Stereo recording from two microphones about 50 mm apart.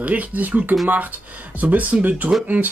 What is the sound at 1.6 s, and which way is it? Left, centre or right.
Speech, right.